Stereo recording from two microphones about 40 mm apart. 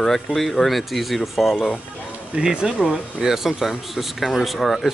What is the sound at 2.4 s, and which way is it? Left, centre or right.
Speech, right.